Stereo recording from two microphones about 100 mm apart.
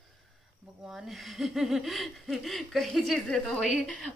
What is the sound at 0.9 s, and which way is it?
Speech, centre (ahead or behind).